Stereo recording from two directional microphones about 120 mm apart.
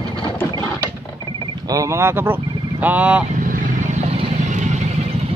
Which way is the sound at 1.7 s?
25° right (ahead or behind).